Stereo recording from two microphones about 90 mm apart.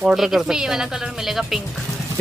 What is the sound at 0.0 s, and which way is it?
A woman's voice, 5° right (ahead or behind).